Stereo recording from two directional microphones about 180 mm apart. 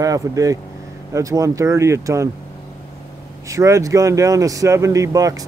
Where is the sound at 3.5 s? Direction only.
15° right (ahead or behind).